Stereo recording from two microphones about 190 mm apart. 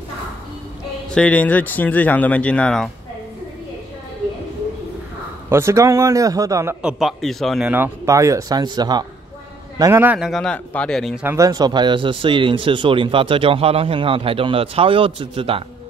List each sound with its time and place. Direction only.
1.1 s speech: 5° left (ahead or behind)
5.5 s a man's voice: 15° right (ahead or behind); by 11.1 s centre (ahead or behind)
11.2 s speech: 15° right (ahead or behind)